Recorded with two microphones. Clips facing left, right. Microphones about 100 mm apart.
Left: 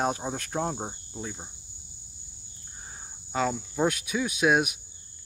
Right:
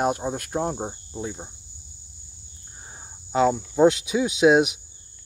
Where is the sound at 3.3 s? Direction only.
20° right (ahead or behind).